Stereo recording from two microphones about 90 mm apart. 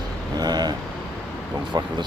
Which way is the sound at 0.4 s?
50° right (ahead or behind).